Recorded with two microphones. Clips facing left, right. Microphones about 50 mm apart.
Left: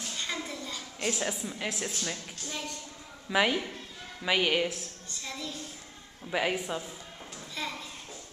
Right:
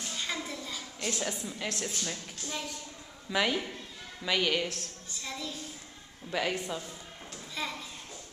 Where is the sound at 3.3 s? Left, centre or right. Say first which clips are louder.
Left 3 dB; centre.